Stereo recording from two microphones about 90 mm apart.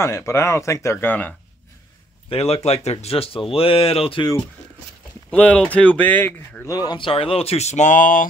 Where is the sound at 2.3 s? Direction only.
90° left.